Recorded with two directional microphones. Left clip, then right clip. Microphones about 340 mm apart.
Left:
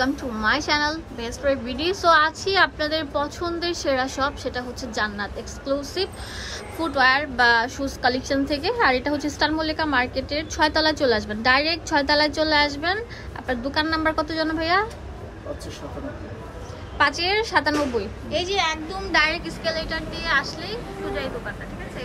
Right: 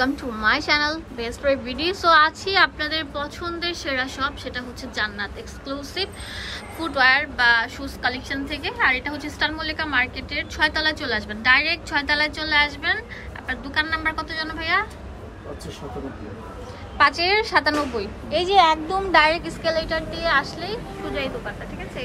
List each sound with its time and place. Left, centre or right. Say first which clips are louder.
0.0 s a woman's voice: right 1 dB; centre
17.0 s a woman's voice: right 3 dB; centre